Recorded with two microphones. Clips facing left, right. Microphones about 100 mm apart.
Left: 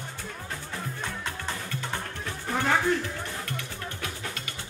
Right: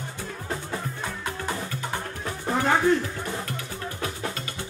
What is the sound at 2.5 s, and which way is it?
Music, 25° right (ahead or behind).